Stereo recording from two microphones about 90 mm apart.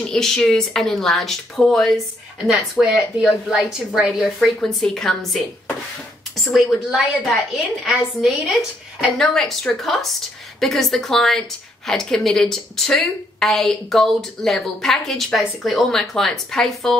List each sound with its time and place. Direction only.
0.1 s a woman's voice: 5° left (ahead or behind)
6.5 s a woman's voice: centre (ahead or behind)